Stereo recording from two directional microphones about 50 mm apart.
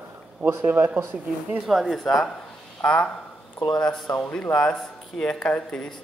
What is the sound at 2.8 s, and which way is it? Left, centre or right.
Speech, left.